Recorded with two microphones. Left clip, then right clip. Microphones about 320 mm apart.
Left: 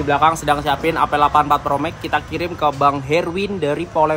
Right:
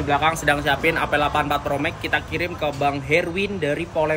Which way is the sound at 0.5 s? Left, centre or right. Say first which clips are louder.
Left 2 dB; centre.